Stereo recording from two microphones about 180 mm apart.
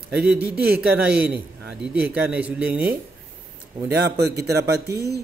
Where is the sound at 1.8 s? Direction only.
5° right (ahead or behind).